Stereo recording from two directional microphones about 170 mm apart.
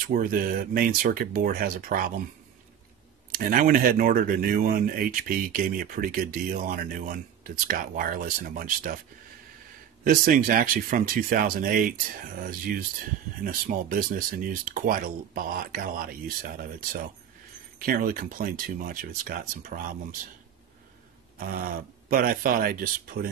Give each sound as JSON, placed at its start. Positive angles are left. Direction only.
{"t": 0.0, "sound": "speech", "side_deg": -55}
{"t": 3.3, "sound": "speech", "side_deg": -55}
{"t": 10.0, "sound": "speech", "side_deg": -55}
{"t": 13.4, "sound": "speech", "side_deg": -55}
{"t": 21.4, "sound": "a sound", "side_deg": -60}
{"t": 22.1, "sound": "speech", "side_deg": -60}